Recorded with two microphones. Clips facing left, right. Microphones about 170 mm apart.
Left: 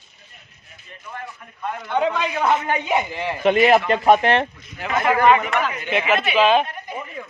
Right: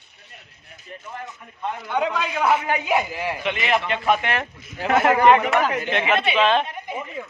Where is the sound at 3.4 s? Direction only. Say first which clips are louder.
Left 10 dB; 40° left (ahead or behind).